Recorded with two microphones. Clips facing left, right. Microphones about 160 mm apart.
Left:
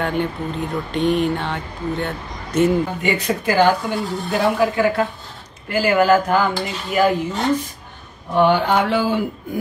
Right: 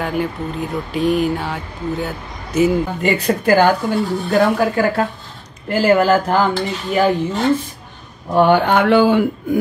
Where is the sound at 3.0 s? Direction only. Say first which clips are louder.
Right 4 dB; 50° right (ahead or behind).